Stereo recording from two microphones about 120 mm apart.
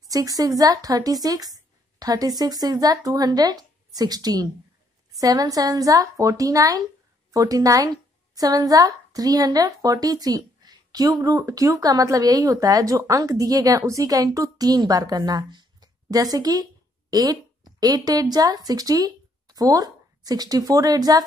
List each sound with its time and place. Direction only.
0.1 s a woman's voice: 30° right (ahead or behind)